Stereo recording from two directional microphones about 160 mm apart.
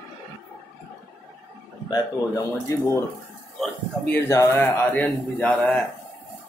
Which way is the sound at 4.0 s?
15° left (ahead or behind).